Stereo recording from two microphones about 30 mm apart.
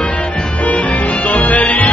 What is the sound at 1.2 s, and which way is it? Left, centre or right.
Music, left.